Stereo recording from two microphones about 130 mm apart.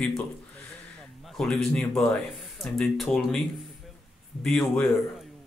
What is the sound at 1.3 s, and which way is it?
Speech, centre (ahead or behind).